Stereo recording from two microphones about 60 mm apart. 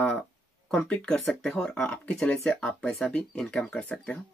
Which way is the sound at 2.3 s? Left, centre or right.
Left.